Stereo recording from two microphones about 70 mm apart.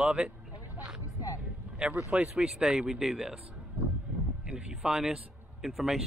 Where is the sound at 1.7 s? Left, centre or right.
Centre.